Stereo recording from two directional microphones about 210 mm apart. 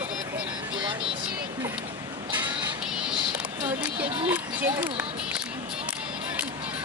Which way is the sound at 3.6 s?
30° right (ahead or behind).